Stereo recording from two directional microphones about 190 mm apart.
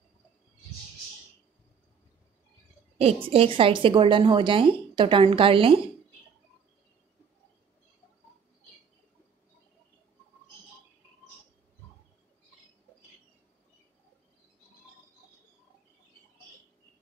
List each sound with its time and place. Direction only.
3.0 s a woman's voice: 30° right (ahead or behind)